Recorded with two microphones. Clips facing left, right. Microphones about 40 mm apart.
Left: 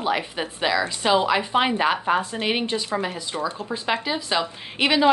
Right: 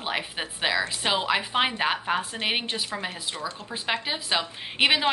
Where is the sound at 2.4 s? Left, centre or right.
Centre.